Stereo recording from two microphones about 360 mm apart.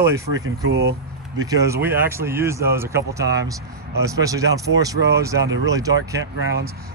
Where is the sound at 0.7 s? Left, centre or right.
Right.